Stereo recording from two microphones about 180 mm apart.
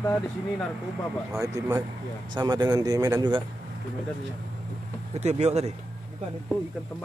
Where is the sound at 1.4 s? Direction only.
20° right (ahead or behind).